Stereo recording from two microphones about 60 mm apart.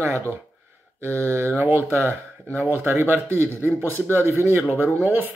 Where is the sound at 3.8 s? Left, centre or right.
Left.